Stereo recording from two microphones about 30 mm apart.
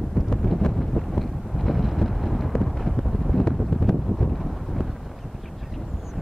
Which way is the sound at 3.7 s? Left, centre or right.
Centre.